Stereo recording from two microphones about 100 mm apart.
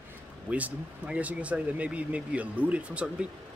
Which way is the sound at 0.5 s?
15° right (ahead or behind).